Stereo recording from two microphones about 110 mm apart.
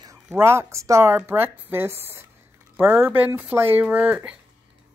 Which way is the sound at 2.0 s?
20° right (ahead or behind).